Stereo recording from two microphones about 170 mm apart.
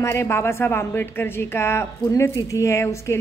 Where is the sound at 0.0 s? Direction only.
15° left (ahead or behind).